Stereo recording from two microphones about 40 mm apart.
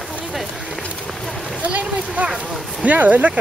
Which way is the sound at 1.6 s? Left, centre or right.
Right.